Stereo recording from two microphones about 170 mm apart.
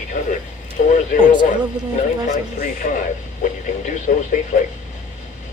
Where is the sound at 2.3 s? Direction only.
50° left (ahead or behind).